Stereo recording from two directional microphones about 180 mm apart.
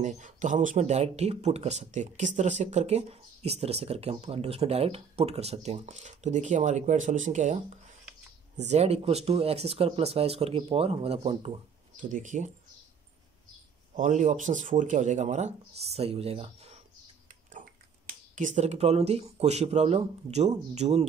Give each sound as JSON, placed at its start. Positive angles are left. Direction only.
{"t": 0.0, "sound": "speech", "side_deg": -45}
{"t": 12.0, "sound": "speech", "side_deg": -45}
{"t": 13.9, "sound": "speech", "side_deg": -45}
{"t": 18.3, "sound": "speech", "side_deg": -45}